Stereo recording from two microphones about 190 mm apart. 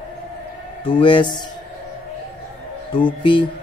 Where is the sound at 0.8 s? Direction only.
25° left (ahead or behind).